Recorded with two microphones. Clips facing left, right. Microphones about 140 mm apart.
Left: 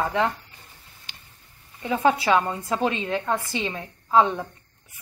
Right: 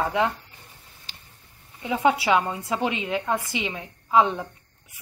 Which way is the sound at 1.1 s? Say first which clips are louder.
Left 1 dB; 35° right (ahead or behind).